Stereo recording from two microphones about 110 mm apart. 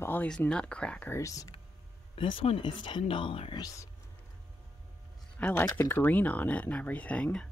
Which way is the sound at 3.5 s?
30° left (ahead or behind).